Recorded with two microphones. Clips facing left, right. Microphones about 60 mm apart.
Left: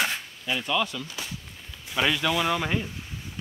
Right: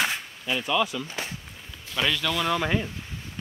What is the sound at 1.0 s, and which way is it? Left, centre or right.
Speech, right.